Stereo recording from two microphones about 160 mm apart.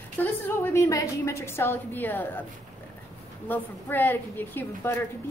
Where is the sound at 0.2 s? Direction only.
15° left (ahead or behind).